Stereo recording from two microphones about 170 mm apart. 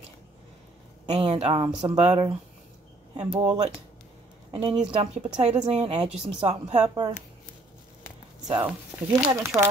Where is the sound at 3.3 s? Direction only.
35° right (ahead or behind).